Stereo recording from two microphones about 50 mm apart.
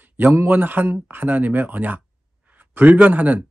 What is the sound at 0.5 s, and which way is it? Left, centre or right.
Speech, right.